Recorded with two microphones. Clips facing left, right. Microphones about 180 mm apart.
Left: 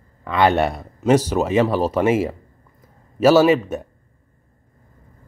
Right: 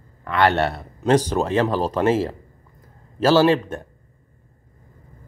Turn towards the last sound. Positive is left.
turn(degrees=5)  # may be behind; listen again after turning